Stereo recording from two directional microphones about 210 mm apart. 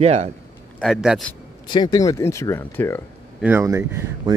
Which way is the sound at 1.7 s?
20° left (ahead or behind).